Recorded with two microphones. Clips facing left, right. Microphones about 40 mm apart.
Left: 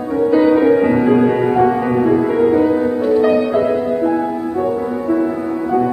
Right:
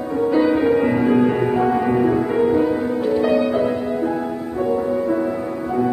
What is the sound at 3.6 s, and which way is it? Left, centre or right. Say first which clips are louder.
Music: left 5 dB; left.